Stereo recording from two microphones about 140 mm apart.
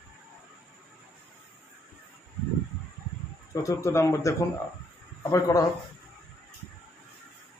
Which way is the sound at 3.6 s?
20° left (ahead or behind).